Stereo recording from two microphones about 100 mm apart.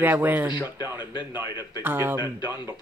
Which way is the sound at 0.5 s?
45° left (ahead or behind).